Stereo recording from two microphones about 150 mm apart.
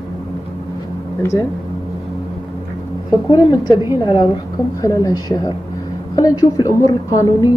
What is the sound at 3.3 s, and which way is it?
A woman's voice, 30° left (ahead or behind).